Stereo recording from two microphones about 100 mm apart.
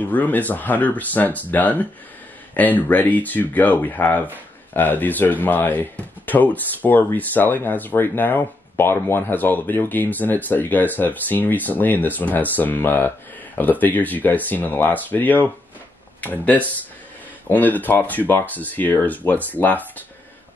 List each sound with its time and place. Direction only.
0.0 s speech: 15° left (ahead or behind)